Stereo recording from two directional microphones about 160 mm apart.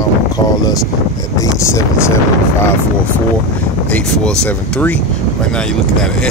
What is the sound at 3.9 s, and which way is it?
Speech, 5° left (ahead or behind).